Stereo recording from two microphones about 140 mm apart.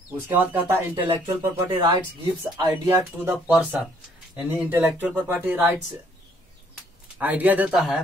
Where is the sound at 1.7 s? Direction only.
30° right (ahead or behind).